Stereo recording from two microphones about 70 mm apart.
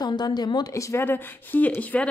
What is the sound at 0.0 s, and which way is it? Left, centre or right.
Speech, left.